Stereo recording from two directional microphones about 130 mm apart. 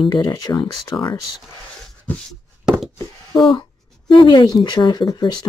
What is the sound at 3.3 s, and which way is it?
Speech, 35° left (ahead or behind).